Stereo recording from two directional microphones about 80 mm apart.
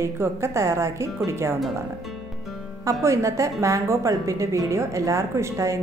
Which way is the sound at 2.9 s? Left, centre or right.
Right.